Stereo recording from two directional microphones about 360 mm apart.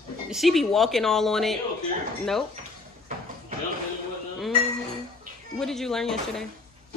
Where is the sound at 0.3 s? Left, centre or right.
Centre.